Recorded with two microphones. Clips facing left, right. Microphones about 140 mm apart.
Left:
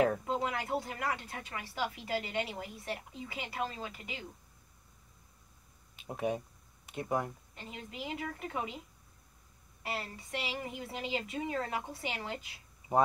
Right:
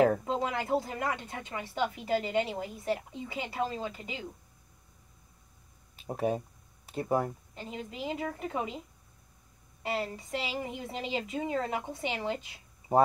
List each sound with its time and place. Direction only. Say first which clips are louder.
0.0 s speech: right 4 dB; 30° right (ahead or behind)
5.9 s speech: right 4 dB; 35° right (ahead or behind)
9.8 s speech: right 6 dB; 25° right (ahead or behind)